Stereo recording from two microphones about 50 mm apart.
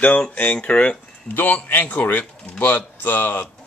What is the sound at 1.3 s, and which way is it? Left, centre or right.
A man's voice, left.